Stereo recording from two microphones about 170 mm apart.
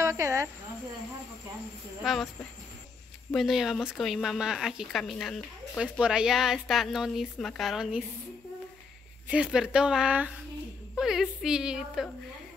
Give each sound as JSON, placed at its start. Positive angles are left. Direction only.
{"t": 0.0, "sound": "a sound", "side_deg": -15}
{"t": 2.0, "sound": "speech", "side_deg": 0}
{"t": 3.3, "sound": "speech", "side_deg": 0}
{"t": 9.3, "sound": "speech", "side_deg": -5}